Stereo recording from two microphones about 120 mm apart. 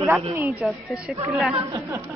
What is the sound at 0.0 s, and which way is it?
Speech, 20° right (ahead or behind).